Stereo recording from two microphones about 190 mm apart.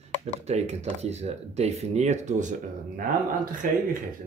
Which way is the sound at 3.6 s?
45° right (ahead or behind).